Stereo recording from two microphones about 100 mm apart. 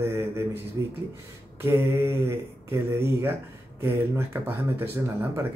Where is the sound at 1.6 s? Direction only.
25° right (ahead or behind).